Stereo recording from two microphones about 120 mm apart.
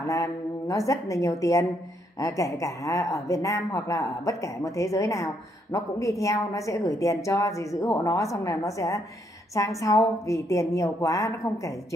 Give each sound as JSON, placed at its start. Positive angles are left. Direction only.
{"t": 0.0, "sound": "speech", "side_deg": 25}